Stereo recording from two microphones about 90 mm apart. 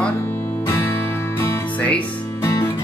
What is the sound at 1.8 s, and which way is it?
Speech, 15° left (ahead or behind).